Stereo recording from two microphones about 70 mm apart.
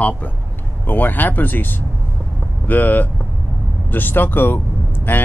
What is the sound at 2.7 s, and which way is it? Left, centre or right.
Speech, left.